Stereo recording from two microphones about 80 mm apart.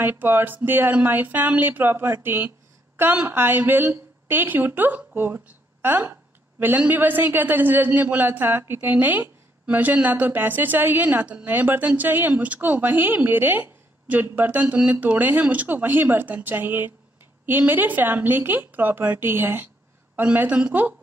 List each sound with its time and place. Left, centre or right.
0.0 s a man's voice: right